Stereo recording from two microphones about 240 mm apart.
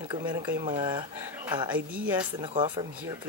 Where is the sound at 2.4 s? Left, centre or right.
Centre.